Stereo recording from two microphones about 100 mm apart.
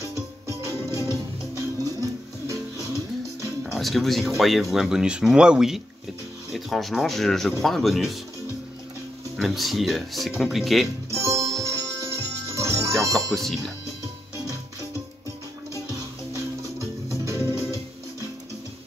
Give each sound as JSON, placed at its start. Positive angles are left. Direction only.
{"t": 0.0, "sound": "music", "side_deg": -30}
{"t": 3.7, "sound": "speech", "side_deg": 0}
{"t": 9.4, "sound": "speech", "side_deg": 0}
{"t": 11.1, "sound": "music", "side_deg": -30}
{"t": 13.1, "sound": "speech", "side_deg": 5}
{"t": 15.9, "sound": "music", "side_deg": -35}